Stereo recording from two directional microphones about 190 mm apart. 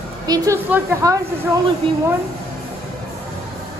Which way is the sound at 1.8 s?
25° right (ahead or behind).